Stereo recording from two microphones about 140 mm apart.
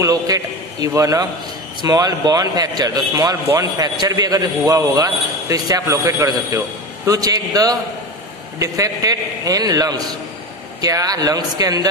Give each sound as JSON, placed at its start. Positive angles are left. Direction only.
{"t": 0.0, "sound": "a man's voice", "side_deg": -25}